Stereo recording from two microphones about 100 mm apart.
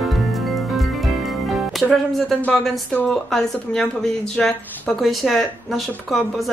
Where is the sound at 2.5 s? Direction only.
Centre (ahead or behind).